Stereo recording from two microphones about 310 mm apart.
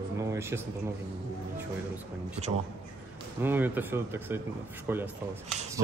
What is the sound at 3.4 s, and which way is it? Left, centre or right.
A man's voice, centre.